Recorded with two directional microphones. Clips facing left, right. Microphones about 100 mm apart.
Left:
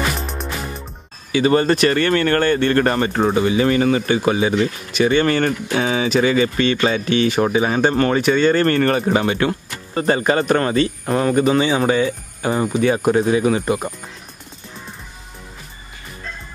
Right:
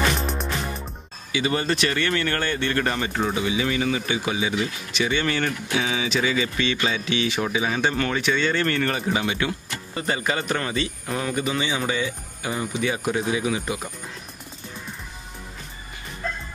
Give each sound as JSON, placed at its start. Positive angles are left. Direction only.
{"t": 0.1, "sound": "music", "side_deg": 0}
{"t": 1.3, "sound": "speech", "side_deg": 45}